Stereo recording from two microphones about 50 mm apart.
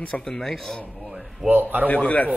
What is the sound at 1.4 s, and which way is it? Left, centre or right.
Speech, right.